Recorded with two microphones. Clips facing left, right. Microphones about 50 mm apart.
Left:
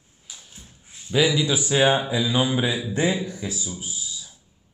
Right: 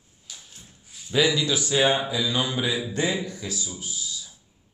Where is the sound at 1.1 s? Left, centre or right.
Centre.